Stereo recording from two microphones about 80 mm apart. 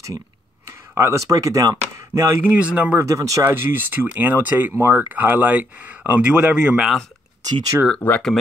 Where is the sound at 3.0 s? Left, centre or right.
Right.